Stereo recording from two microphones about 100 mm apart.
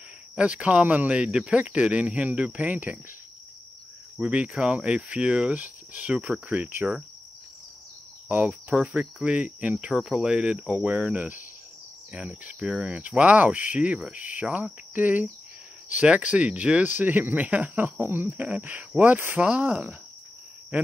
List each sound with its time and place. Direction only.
0.4 s speech: 15° right (ahead or behind)
4.2 s speech: 10° right (ahead or behind)
8.3 s speech: 15° right (ahead or behind)